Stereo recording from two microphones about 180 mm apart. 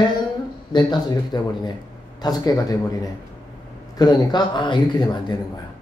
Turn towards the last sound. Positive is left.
turn(degrees=25)  # may be behind; listen again after turning